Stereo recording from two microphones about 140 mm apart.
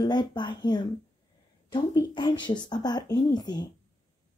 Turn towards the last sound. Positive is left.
turn(degrees=30)  # may be behind; listen again after turning